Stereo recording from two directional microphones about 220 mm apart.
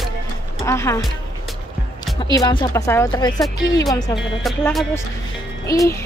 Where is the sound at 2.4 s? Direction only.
20° left (ahead or behind).